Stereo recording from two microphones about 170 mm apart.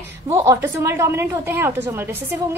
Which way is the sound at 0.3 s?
15° right (ahead or behind).